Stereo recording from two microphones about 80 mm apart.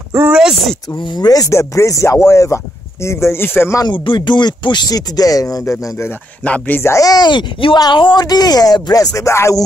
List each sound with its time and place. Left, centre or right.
0.3 s speech: centre
1.1 s speech: left
3.8 s speech: left
6.4 s speech: centre
6.8 s speech: left
7.1 s speech: left